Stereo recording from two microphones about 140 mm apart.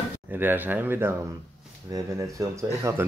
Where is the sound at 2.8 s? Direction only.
20° right (ahead or behind).